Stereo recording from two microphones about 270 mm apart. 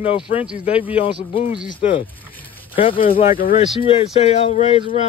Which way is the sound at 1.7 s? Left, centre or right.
Centre.